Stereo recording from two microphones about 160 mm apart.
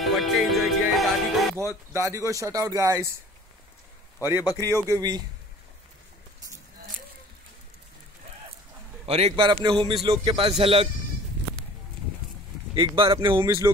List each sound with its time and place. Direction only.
0.0 s music: centre (ahead or behind)
1.9 s speech: 20° right (ahead or behind)
4.2 s speech: 15° right (ahead or behind)
9.0 s a man's voice: 35° right (ahead or behind)
12.7 s speech: 30° right (ahead or behind)
13.3 s speech: 15° right (ahead or behind)